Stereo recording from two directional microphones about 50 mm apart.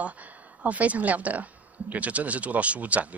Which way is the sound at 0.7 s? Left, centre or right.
Right.